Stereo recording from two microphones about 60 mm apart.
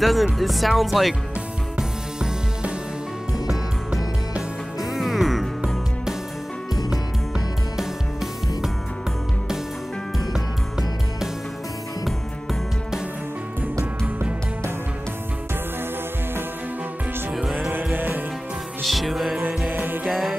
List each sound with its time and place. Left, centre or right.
0.0 s speech: centre
1.8 s music: centre
4.9 s music: centre
6.9 s music: centre
10.1 s music: centre
17.3 s music: centre
17.6 s music: right
18.8 s music: centre
19.7 s music: right
20.1 s music: centre